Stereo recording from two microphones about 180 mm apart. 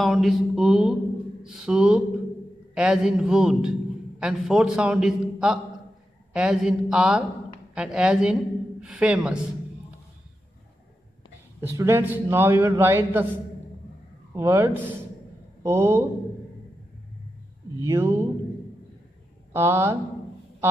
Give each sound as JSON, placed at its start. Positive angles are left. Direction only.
{"t": 0.0, "sound": "a man's voice", "side_deg": 0}
{"t": 11.6, "sound": "a man's voice", "side_deg": -15}
{"t": 14.3, "sound": "a man's voice", "side_deg": -15}
{"t": 17.7, "sound": "a man's voice", "side_deg": -15}
{"t": 19.5, "sound": "a man's voice", "side_deg": -15}